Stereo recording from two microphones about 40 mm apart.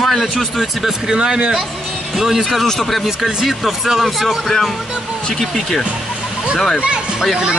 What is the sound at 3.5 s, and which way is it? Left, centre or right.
Speech, centre.